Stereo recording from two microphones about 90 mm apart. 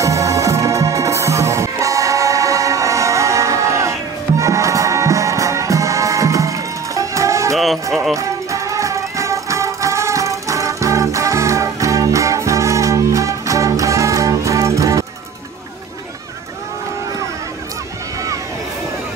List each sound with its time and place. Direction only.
0.0 s music: 35° right (ahead or behind)
7.5 s music: centre (ahead or behind)
8.1 s music: 35° right (ahead or behind)